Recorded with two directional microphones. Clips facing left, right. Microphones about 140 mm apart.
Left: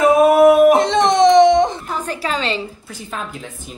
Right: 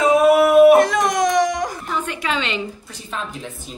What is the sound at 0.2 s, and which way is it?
Yodeling, 45° left (ahead or behind).